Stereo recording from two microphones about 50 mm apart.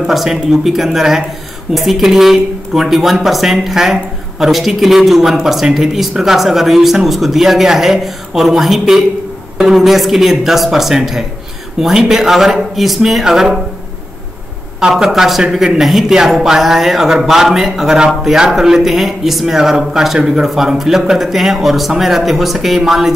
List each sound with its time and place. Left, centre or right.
0.1 s speech: centre
14.9 s speech: centre